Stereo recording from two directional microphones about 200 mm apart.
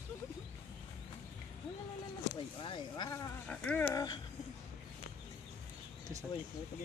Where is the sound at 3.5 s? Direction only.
5° left (ahead or behind).